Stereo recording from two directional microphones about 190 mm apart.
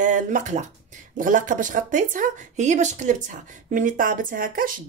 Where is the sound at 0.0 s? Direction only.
40° right (ahead or behind).